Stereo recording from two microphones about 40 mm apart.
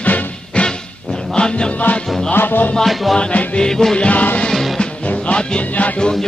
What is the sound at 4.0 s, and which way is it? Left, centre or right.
Music, left.